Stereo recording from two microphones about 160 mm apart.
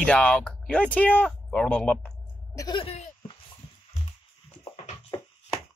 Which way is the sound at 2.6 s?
25° left (ahead or behind).